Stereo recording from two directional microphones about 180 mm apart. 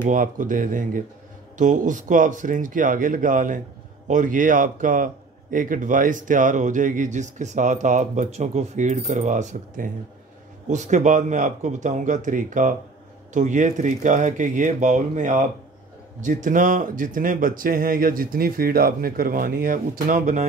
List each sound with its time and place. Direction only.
0.0 s a man's voice: 45° right (ahead or behind)